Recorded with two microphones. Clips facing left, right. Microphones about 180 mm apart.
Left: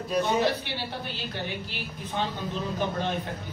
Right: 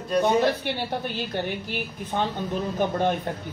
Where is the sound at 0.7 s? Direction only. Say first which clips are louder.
Right 6 dB; 50° right (ahead or behind).